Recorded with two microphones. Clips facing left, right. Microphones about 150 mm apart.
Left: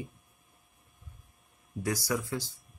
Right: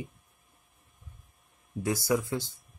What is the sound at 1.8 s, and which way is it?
Speech, 25° right (ahead or behind).